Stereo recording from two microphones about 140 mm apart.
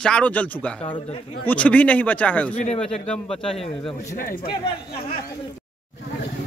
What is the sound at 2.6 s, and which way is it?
Speech, 50° left (ahead or behind).